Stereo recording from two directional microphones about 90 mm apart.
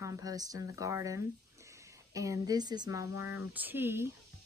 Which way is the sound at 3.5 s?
20° right (ahead or behind).